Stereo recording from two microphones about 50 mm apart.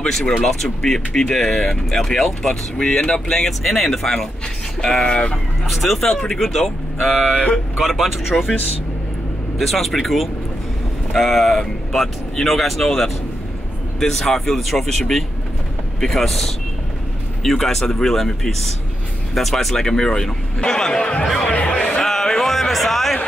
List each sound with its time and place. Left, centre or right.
0.4 s speech: centre
5.0 s speech: centre
5.7 s speech: centre
9.6 s speech: centre
21.4 s music: left
22.0 s a sound: centre